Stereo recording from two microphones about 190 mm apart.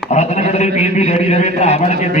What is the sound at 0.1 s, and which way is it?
A man's voice, 35° left (ahead or behind).